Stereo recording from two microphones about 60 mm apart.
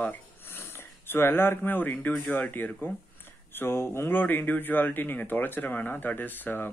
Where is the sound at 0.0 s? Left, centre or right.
Left.